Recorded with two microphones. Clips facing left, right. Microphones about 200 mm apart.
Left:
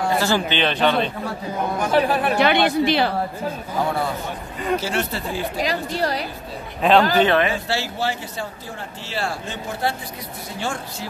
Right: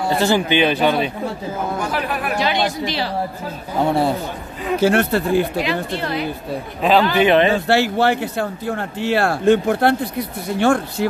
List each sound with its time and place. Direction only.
0.2 s speech: 15° right (ahead or behind)
1.8 s a woman's voice: 30° left (ahead or behind)
2.3 s speech: 60° left (ahead or behind)
4.7 s speech: 55° right (ahead or behind)
5.6 s a woman's voice: 40° left (ahead or behind)
6.8 s a man's voice: centre (ahead or behind)
7.2 s speech: 15° right (ahead or behind)
7.5 s speech: 60° right (ahead or behind)